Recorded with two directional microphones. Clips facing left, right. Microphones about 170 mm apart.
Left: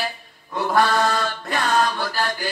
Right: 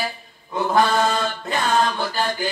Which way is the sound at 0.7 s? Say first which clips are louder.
Right 1 dB; 20° right (ahead or behind).